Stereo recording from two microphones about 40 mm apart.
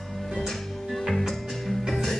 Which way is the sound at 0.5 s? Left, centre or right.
Centre.